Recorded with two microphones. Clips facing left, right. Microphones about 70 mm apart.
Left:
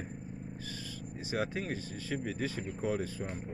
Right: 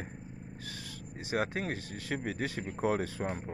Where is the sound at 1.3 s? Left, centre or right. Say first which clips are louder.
Right 2 dB; right.